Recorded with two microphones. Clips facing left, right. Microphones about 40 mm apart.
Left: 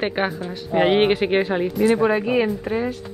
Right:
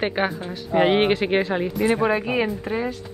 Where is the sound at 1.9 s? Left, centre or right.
Centre.